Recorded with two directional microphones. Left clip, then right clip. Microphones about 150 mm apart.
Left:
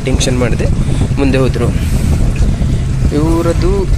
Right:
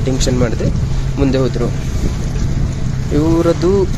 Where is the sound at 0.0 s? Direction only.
Centre (ahead or behind).